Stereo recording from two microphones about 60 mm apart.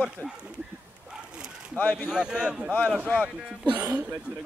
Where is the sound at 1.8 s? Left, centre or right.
Left.